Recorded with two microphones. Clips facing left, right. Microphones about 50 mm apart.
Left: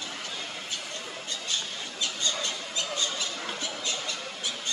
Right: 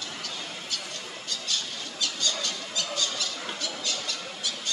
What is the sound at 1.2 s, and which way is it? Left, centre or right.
Squawk, left.